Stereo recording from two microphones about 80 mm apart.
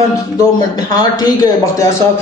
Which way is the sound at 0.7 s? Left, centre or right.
Left.